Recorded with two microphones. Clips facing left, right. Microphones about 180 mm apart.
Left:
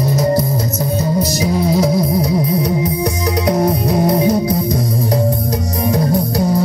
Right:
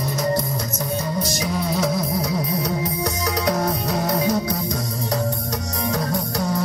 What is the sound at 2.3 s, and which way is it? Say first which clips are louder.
Music: left 7 dB; 20° left (ahead or behind).